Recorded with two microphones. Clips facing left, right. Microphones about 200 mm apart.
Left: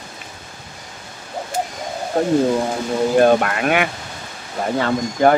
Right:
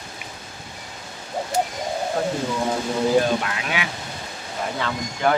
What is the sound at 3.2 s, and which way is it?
Speech, 55° left (ahead or behind).